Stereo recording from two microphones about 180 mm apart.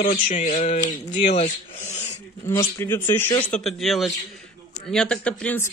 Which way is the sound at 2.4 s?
15° left (ahead or behind).